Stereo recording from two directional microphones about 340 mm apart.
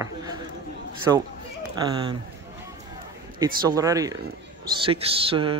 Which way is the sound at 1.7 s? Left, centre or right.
Centre.